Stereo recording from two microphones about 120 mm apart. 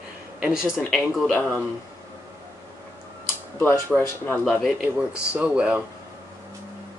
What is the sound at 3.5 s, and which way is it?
Speech, 20° left (ahead or behind).